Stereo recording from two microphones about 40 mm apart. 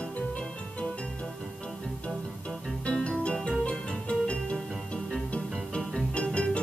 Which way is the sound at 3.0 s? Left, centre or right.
Left.